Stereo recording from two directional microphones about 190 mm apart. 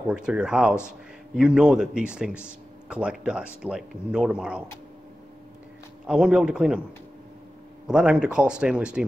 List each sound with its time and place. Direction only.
0.1 s a man's voice: 5° right (ahead or behind)
6.0 s a man's voice: 5° right (ahead or behind)
7.8 s a man's voice: 5° right (ahead or behind)